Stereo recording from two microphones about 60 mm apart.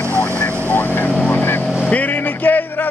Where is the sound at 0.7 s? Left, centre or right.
Left.